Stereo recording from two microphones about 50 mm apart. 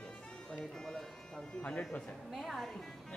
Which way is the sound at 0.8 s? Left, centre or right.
Centre.